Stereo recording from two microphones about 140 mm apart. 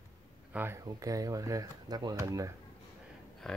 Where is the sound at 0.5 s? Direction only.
15° right (ahead or behind).